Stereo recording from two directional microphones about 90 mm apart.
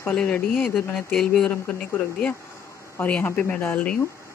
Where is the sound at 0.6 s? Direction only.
Centre (ahead or behind).